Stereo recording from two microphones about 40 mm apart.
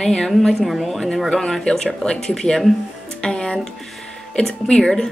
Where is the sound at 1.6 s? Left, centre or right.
Centre.